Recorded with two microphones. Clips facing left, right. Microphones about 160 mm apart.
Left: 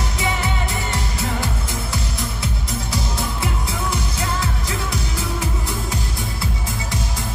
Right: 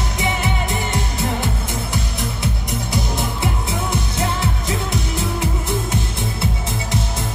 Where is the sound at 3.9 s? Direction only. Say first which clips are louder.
Right 3 dB; 20° right (ahead or behind).